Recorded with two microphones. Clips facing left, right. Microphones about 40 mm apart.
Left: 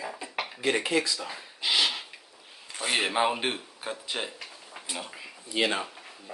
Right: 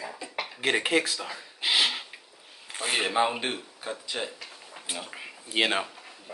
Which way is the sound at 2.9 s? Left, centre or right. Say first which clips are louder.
Even; centre.